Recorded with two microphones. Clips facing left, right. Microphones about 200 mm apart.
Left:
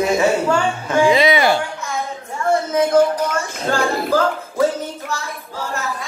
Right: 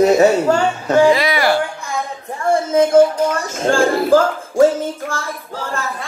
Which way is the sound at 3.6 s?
50° right (ahead or behind).